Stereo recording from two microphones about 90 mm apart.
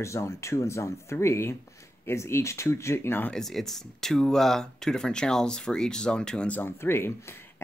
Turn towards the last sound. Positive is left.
turn(degrees=25)  # may be behind; listen again after turning